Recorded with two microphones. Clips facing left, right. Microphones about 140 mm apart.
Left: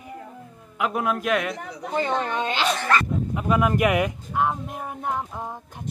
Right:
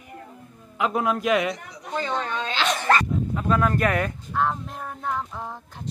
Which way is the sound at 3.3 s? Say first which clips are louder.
Left 2 dB; 15° left (ahead or behind).